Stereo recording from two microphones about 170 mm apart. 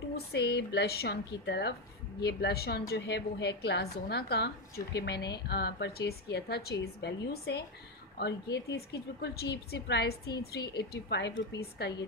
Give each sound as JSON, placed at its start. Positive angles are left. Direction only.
{"t": 0.1, "sound": "a woman's voice", "side_deg": 75}
{"t": 2.1, "sound": "a woman's voice", "side_deg": 75}
{"t": 2.9, "sound": "a woman's voice", "side_deg": 85}